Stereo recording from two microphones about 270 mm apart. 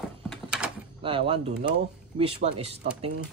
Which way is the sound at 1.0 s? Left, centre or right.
Centre.